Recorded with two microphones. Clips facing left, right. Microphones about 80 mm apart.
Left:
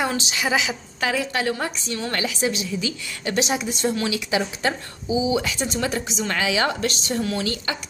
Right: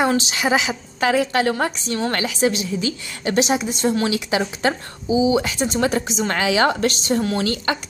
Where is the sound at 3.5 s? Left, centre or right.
Right.